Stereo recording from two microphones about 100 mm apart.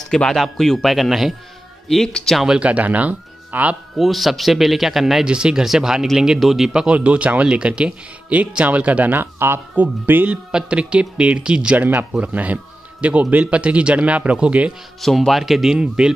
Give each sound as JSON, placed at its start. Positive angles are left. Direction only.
{"t": 0.0, "sound": "a man's voice", "side_deg": 5}
{"t": 3.9, "sound": "speech", "side_deg": 0}
{"t": 15.0, "sound": "a man's voice", "side_deg": 0}